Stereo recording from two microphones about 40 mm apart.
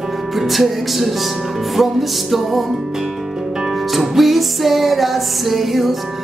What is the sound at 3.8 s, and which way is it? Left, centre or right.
Music, centre.